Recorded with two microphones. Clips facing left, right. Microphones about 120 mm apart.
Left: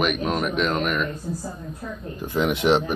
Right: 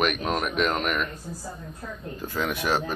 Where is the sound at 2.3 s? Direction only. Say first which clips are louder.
Left 7 dB; 20° left (ahead or behind).